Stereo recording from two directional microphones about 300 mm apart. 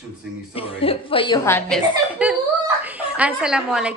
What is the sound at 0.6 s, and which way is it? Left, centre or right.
A woman's voice, centre.